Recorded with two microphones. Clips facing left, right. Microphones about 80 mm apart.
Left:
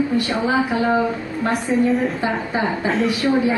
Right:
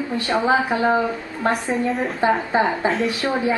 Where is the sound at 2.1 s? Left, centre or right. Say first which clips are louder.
Right 3 dB; right.